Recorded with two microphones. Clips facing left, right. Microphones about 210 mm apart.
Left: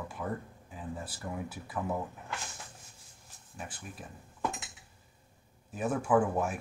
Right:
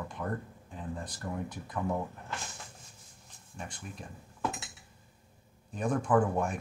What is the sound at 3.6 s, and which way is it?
Speech, 5° left (ahead or behind).